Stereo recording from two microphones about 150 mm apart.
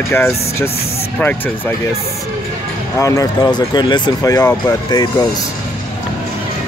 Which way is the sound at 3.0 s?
20° left (ahead or behind).